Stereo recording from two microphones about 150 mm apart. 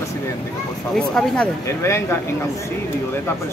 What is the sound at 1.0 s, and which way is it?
Speech, 5° left (ahead or behind).